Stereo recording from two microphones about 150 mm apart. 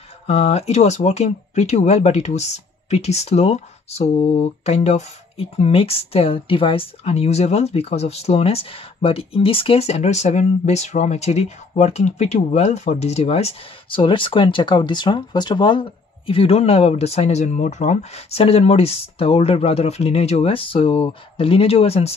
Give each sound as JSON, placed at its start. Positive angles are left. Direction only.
{"t": 0.3, "sound": "speech", "side_deg": 45}